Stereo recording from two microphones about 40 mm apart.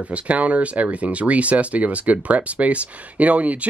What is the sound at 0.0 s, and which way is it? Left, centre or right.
Speech, right.